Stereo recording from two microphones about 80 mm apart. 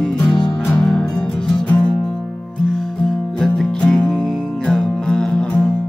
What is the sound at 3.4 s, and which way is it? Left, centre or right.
Music, centre.